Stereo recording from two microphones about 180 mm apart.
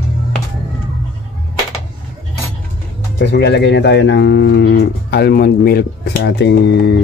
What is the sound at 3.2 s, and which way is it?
Speech, 65° left (ahead or behind).